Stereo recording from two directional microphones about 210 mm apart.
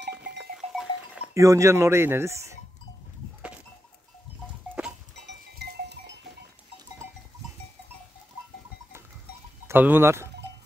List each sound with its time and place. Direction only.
0.6 s livestock: 5° right (ahead or behind)
4.6 s goat: 5° right (ahead or behind)
5.2 s goat: 55° right (ahead or behind)
9.7 s speech: 10° right (ahead or behind)